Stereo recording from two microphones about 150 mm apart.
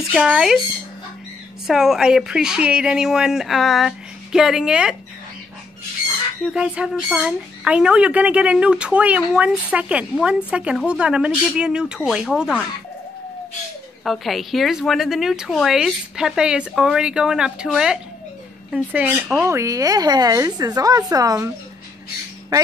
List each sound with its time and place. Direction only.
0.1 s speech: 5° right (ahead or behind)
1.7 s speech: 5° right (ahead or behind)
6.4 s speech: 5° right (ahead or behind)
14.0 s speech: centre (ahead or behind); by 21.5 s 25° right (ahead or behind)